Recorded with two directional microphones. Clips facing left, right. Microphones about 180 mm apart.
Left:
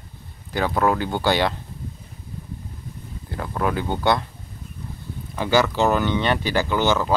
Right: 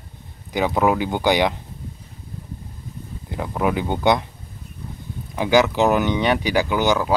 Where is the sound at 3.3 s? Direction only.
15° right (ahead or behind).